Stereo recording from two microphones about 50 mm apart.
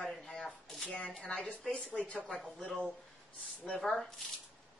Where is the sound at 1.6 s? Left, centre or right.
Centre.